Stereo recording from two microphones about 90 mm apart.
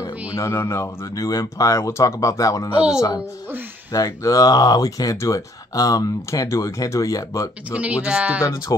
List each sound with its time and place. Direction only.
0.4 s speech: 30° left (ahead or behind)
3.9 s speech: 40° left (ahead or behind)
7.7 s speech: 15° right (ahead or behind)